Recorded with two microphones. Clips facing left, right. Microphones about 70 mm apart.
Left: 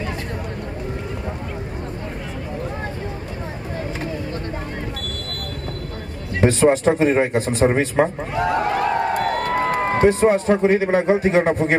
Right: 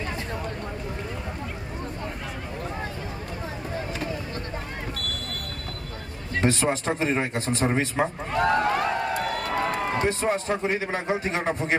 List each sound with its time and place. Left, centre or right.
6.4 s speech: left
8.3 s a man's voice: centre
8.8 s a sound: left
10.9 s speech: left